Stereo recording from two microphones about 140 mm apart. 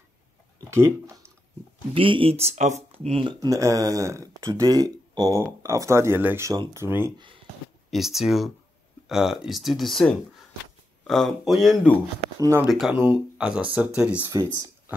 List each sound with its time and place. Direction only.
0.7 s speech: 20° right (ahead or behind)
2.0 s speech: 40° right (ahead or behind)
3.3 s speech: 25° right (ahead or behind)
7.9 s speech: centre (ahead or behind)
12.4 s speech: 20° right (ahead or behind)
12.6 s speech: centre (ahead or behind)
12.9 s speech: 15° right (ahead or behind)
14.3 s speech: 30° right (ahead or behind)